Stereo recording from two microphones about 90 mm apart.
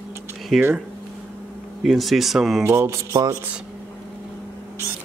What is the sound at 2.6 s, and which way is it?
Mantra, 30° right (ahead or behind).